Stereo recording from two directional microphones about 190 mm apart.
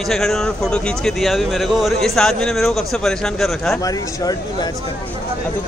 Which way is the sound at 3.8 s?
20° left (ahead or behind).